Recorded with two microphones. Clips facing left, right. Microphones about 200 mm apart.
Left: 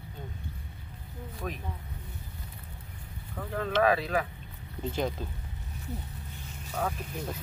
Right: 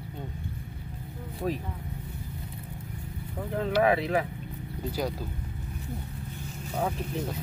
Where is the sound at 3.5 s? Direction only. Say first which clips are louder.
Right 2 dB; 25° right (ahead or behind).